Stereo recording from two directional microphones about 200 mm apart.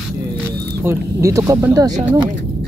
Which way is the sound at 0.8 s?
15° right (ahead or behind).